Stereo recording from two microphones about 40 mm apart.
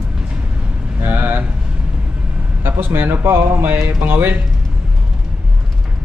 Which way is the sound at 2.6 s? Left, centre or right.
Right.